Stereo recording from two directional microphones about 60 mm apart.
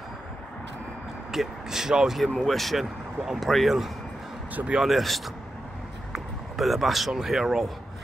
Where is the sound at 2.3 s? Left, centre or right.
Centre.